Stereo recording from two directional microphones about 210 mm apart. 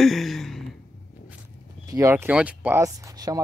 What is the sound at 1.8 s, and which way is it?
Speech, 15° right (ahead or behind).